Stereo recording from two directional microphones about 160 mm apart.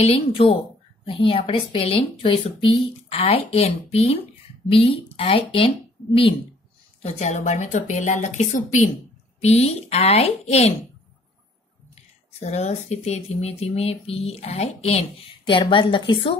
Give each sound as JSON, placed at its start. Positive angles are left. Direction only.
{"t": 0.0, "sound": "speech", "side_deg": 35}
{"t": 7.0, "sound": "a woman's voice", "side_deg": 45}
{"t": 12.4, "sound": "speech", "side_deg": 45}
{"t": 15.4, "sound": "speech", "side_deg": 30}